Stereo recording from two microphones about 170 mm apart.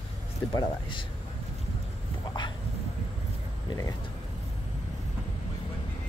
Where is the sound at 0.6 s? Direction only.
30° left (ahead or behind).